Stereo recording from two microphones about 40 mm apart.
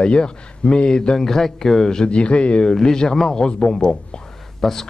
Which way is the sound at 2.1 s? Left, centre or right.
Left.